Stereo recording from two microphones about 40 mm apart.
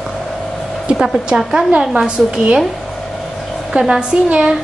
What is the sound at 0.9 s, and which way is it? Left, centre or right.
A woman's voice, centre.